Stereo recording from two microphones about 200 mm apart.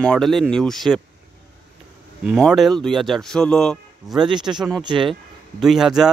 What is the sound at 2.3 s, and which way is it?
Speech, centre (ahead or behind).